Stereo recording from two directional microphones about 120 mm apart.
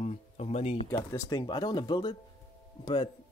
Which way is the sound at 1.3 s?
40° left (ahead or behind).